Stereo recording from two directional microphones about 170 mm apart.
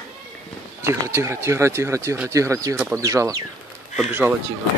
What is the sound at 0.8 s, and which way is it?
Speech, 15° right (ahead or behind).